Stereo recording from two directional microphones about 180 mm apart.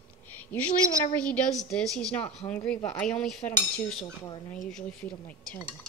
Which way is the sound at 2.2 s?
35° left (ahead or behind).